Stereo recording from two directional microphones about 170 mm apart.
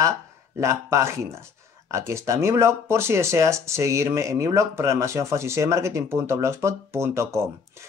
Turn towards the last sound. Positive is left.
turn(degrees=-15)  # may be behind; listen again after turning